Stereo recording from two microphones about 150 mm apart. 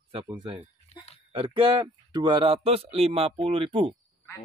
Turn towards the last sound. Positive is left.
turn(degrees=-35)  # may be behind; listen again after turning